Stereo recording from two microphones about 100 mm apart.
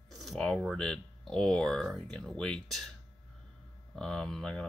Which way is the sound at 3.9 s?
5° left (ahead or behind).